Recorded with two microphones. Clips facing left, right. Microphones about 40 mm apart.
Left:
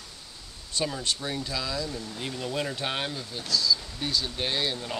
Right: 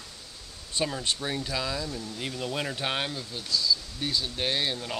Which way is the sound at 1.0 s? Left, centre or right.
Centre.